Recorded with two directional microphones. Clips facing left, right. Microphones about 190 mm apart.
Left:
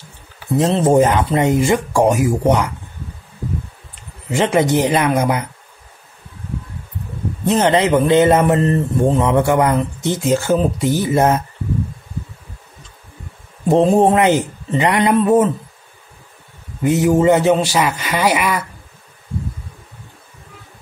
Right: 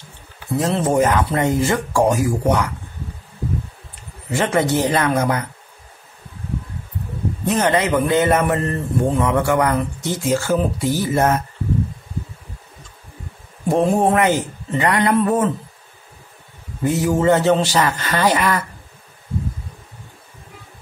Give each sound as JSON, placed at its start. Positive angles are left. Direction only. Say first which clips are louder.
{"t": 0.6, "sound": "speech", "louder": "left 4 dB", "side_deg": 25}
{"t": 4.3, "sound": "a man's voice", "louder": "left 3 dB", "side_deg": 15}
{"t": 7.4, "sound": "speech", "louder": "left 4 dB", "side_deg": 25}
{"t": 13.7, "sound": "speech", "louder": "left 4 dB", "side_deg": 25}
{"t": 16.8, "sound": "a man's voice", "louder": "left 4 dB", "side_deg": 20}